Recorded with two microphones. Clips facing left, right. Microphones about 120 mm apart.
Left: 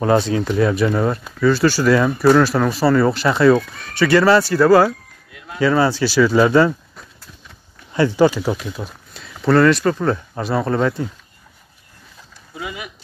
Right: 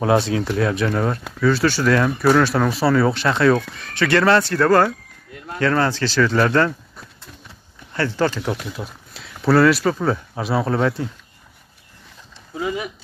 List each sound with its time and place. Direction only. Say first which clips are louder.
0.0 s speech: left 2 dB; centre (ahead or behind)
7.9 s speech: left 6 dB; 15° left (ahead or behind)
12.5 s speech: right 6 dB; 35° right (ahead or behind)